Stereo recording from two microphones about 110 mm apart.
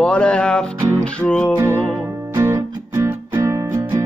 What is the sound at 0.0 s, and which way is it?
Music, 10° left (ahead or behind).